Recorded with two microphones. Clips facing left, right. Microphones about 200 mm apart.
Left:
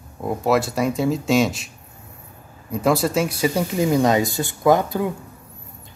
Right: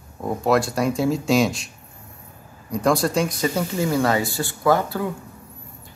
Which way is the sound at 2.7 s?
5° left (ahead or behind).